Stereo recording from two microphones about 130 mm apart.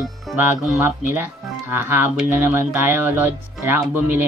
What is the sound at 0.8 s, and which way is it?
Speech, 15° right (ahead or behind).